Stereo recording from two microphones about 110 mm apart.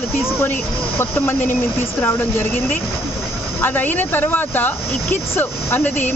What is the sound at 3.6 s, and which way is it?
Speech, 20° left (ahead or behind).